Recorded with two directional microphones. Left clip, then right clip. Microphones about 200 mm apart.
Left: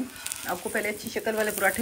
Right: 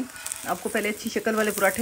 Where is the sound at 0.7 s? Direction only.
15° right (ahead or behind).